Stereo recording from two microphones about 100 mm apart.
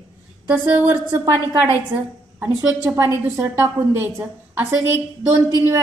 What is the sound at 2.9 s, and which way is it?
A woman's voice, 25° right (ahead or behind).